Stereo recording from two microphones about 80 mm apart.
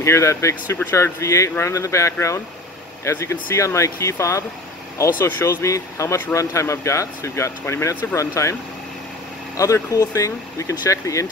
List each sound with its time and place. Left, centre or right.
0.0 s speech: left
9.8 s speech: left